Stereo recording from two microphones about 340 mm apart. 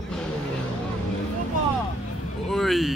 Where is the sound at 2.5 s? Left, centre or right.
Centre.